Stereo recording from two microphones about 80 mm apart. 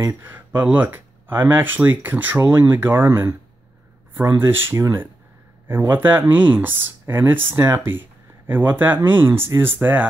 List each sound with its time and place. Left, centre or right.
0.6 s speech: right